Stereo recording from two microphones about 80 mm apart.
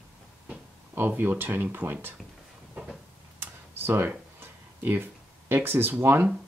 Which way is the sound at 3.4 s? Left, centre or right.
Right.